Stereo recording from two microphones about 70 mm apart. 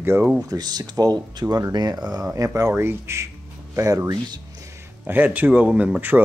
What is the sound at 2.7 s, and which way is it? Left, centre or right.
Speech, right.